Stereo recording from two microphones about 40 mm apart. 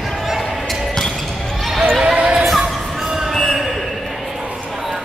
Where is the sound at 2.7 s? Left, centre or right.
Centre.